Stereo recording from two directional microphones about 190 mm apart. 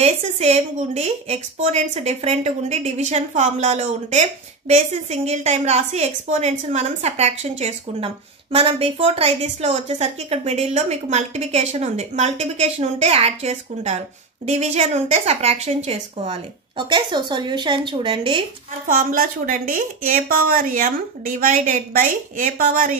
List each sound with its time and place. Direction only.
0.0 s a woman's voice: 35° right (ahead or behind)
18.9 s a woman's voice: 45° right (ahead or behind)